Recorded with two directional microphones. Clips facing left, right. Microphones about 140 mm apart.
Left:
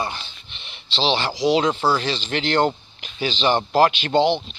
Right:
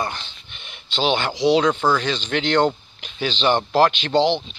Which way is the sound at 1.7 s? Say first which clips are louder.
Right 1 dB; 5° left (ahead or behind).